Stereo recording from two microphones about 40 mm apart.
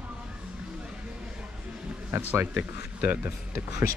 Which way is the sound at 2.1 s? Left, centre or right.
Right.